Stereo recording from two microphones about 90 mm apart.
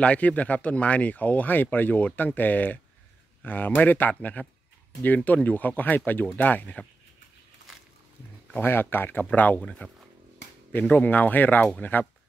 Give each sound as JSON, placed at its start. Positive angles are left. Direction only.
{"t": 0.0, "sound": "speech", "side_deg": 15}
{"t": 8.5, "sound": "speech", "side_deg": 25}